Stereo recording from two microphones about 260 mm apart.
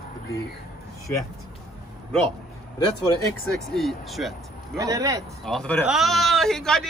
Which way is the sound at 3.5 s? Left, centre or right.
Centre.